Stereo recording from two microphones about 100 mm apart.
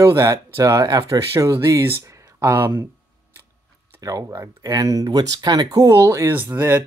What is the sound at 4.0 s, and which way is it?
Speech, 35° right (ahead or behind).